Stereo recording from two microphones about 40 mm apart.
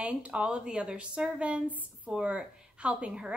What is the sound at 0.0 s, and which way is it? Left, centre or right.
A woman's voice, right.